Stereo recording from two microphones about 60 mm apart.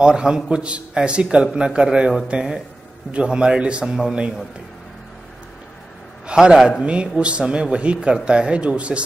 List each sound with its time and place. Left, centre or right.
0.0 s a man's voice: centre
6.2 s a man's voice: centre